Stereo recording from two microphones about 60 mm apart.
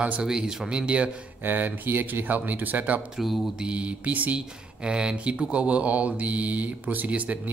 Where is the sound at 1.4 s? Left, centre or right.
Right.